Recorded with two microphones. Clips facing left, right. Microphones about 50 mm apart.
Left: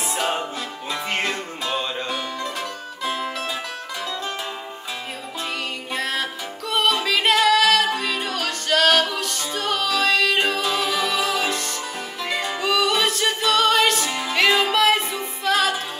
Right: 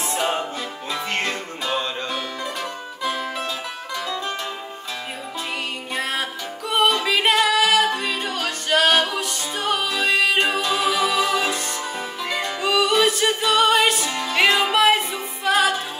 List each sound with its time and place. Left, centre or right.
0.0 s music: centre
5.9 s music: centre
10.7 s music: centre
14.0 s music: centre
14.6 s music: centre